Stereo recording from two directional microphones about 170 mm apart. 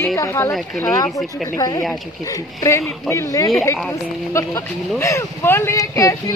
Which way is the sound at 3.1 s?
20° left (ahead or behind).